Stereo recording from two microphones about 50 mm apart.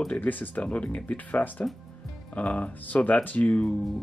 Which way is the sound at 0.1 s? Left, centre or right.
Left.